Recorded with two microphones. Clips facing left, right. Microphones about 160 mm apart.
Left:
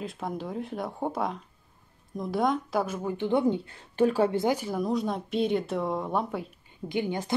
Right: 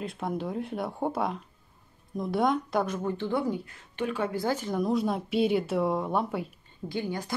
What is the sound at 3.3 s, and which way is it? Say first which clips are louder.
A woman's voice: left 8 dB; 25° left (ahead or behind).